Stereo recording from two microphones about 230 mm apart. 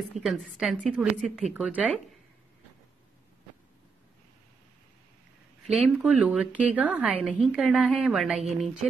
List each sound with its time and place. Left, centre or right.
0.1 s a woman's voice: centre
5.7 s a woman's voice: centre